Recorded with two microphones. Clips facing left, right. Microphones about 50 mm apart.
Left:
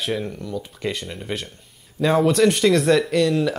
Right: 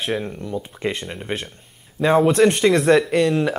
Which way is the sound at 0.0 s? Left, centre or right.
Centre.